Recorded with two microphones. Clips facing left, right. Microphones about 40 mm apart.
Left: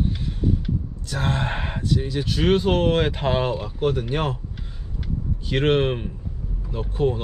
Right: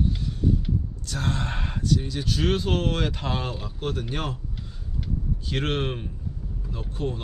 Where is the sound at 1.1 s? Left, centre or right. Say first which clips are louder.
Left 4 dB; left.